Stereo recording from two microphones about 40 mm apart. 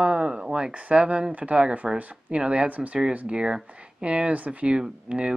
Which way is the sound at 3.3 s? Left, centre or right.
Right.